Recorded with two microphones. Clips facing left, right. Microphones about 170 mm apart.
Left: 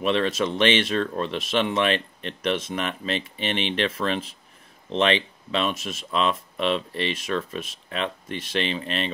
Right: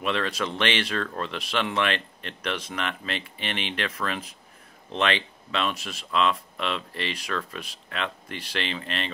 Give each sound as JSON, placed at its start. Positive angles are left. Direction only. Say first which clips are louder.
{"t": 0.0, "sound": "speech", "louder": "left 5 dB", "side_deg": 20}